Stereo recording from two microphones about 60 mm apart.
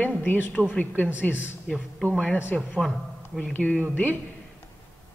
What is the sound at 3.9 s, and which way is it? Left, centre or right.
Speech, left.